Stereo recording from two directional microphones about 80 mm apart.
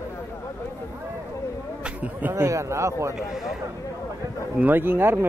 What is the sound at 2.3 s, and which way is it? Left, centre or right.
Speech, right.